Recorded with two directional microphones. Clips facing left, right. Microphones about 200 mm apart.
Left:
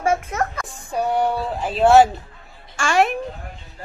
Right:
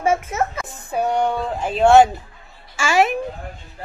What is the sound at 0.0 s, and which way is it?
A child's voice, 5° right (ahead or behind).